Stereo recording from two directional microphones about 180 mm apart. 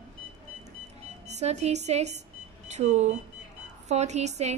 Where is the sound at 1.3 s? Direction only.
40° right (ahead or behind).